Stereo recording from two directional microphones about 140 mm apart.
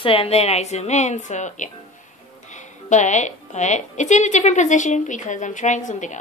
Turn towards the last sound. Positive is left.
turn(degrees=60)  # may be behind; listen again after turning